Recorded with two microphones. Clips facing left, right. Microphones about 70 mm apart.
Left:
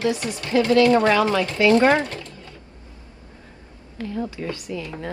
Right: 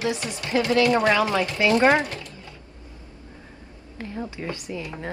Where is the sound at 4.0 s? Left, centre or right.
Right.